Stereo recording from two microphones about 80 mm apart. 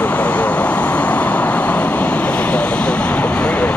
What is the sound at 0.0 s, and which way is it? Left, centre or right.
Vehicle, centre.